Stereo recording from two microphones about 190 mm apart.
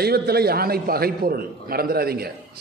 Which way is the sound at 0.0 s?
55° right (ahead or behind).